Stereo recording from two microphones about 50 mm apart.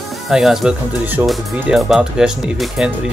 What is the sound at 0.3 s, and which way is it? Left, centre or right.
Speech, centre.